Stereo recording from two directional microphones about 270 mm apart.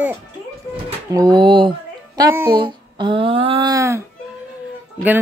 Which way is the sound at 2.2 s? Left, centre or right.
Centre.